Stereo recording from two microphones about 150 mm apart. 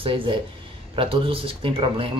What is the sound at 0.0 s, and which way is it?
Speech, 35° right (ahead or behind).